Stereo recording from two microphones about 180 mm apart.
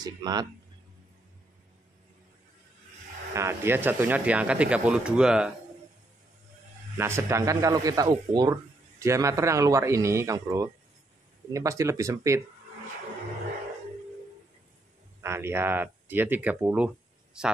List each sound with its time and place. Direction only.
0.0 s speech: 20° right (ahead or behind)
3.3 s speech: 15° right (ahead or behind)
7.0 s speech: 15° right (ahead or behind)
15.2 s speech: 15° right (ahead or behind)